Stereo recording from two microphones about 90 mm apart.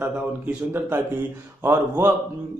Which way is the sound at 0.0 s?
20° right (ahead or behind).